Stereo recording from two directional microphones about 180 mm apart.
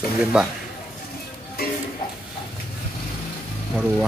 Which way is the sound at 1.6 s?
60° left (ahead or behind).